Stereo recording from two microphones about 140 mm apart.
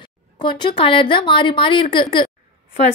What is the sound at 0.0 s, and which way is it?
A woman's voice, 35° left (ahead or behind).